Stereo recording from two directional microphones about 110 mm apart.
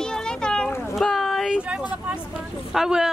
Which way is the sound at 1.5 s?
10° right (ahead or behind).